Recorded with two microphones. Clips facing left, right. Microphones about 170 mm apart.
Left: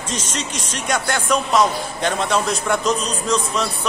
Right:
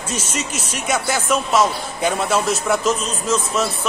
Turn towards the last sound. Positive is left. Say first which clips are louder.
# right 1 dB
turn(degrees=-5)  # may be behind; listen again after turning